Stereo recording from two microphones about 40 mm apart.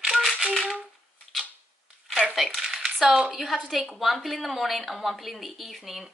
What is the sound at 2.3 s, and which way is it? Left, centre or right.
Speech, centre.